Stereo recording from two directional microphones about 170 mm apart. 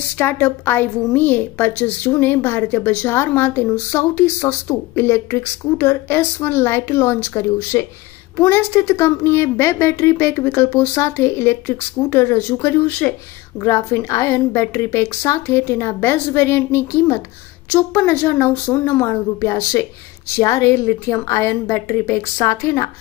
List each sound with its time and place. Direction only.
0.2 s a woman's voice: 10° left (ahead or behind)